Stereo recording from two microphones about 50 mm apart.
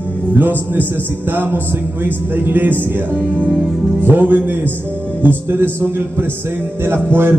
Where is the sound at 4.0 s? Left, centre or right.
Right.